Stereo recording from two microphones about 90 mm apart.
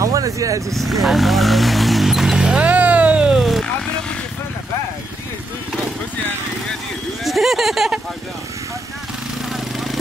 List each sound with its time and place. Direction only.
0.0 s speech: 40° right (ahead or behind)
1.0 s a sound: centre (ahead or behind)
7.2 s speech: centre (ahead or behind)